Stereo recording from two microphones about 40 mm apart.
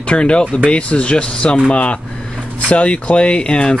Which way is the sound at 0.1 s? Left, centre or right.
Left.